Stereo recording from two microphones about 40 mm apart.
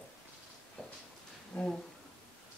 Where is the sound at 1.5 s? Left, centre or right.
Centre.